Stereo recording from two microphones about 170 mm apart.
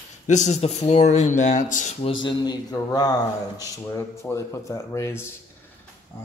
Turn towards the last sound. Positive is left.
turn(degrees=15)  # may be behind; listen again after turning